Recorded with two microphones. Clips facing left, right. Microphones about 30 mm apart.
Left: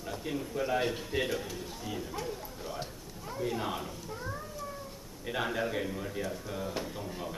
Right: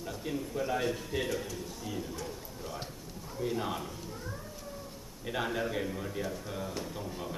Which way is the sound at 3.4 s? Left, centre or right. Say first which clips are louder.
Even; centre.